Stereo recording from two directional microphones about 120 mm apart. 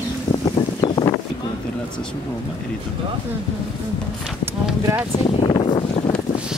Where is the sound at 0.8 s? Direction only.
30° left (ahead or behind).